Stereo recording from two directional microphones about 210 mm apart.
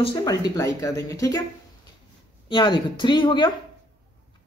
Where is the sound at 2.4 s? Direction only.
20° left (ahead or behind).